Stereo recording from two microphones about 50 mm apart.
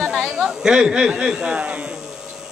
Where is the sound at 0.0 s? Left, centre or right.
Centre.